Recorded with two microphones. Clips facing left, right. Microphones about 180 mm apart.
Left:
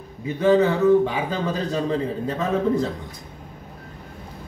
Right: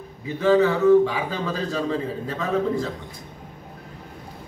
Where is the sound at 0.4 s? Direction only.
20° left (ahead or behind).